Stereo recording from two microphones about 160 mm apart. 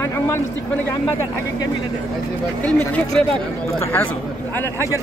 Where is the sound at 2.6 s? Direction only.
10° left (ahead or behind).